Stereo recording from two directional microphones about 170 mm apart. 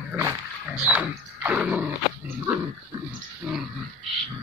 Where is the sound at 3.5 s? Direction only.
5° right (ahead or behind).